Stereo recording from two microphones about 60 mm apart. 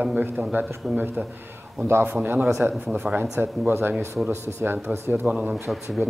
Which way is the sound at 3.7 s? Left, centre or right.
Right.